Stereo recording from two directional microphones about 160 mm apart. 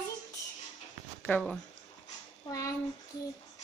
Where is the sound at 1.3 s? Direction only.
5° left (ahead or behind).